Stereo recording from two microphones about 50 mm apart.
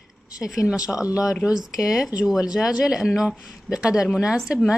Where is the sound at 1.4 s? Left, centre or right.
Centre.